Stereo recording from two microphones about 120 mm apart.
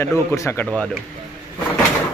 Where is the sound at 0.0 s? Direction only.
20° left (ahead or behind).